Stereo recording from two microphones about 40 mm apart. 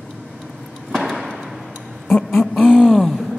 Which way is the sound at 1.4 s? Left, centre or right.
Centre.